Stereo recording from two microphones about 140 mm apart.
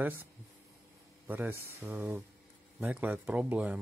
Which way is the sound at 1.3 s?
15° right (ahead or behind).